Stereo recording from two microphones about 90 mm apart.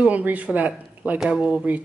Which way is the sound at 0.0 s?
15° right (ahead or behind).